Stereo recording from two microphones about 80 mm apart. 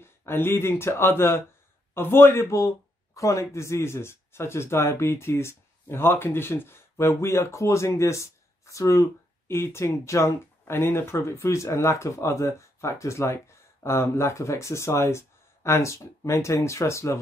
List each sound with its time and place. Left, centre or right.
0.0 s a man's voice: left